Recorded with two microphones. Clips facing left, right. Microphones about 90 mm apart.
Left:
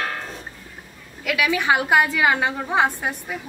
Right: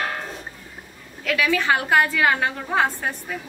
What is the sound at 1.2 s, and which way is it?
A woman's voice, 10° left (ahead or behind).